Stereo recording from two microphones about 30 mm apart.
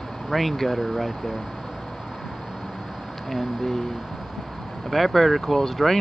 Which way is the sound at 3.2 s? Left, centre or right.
Centre.